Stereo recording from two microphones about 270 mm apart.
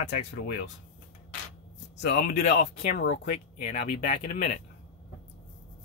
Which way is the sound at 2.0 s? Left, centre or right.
Left.